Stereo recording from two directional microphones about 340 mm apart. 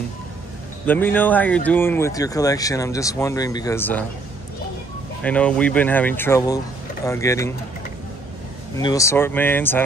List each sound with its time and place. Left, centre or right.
0.8 s speech: centre
5.2 s speech: centre
8.7 s speech: centre